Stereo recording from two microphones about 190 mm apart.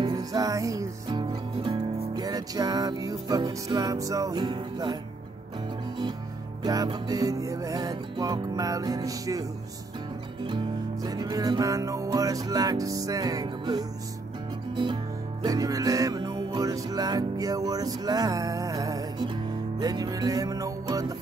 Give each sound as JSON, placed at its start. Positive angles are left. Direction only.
{"t": 0.0, "sound": "speech", "side_deg": -20}
{"t": 6.6, "sound": "music", "side_deg": -20}
{"t": 10.4, "sound": "music", "side_deg": -20}
{"t": 15.4, "sound": "music", "side_deg": -20}